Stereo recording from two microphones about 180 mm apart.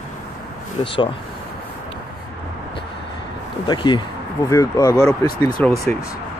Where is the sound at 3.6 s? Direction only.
25° left (ahead or behind); by 5.8 s 10° left (ahead or behind).